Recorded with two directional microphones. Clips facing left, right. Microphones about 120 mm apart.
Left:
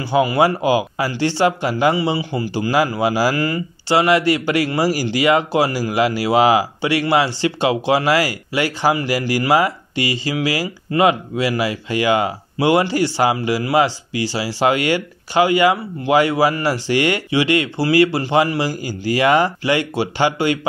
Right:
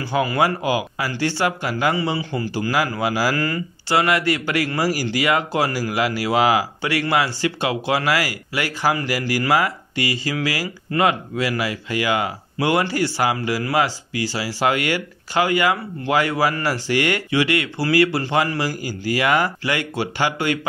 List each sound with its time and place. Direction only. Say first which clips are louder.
0.0 s a man's voice: left 4 dB; 15° left (ahead or behind)
2.0 s a man's voice: left 3 dB; 10° left (ahead or behind)
2.5 s speech: left 5 dB; 25° left (ahead or behind)